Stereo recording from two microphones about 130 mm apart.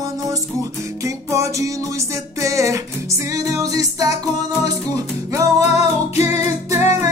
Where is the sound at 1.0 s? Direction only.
25° right (ahead or behind).